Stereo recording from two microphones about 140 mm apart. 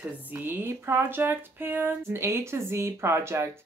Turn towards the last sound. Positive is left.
turn(degrees=-20)  # may be behind; listen again after turning